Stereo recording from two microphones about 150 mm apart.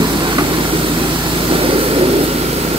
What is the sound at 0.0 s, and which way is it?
Vehicle, 30° right (ahead or behind).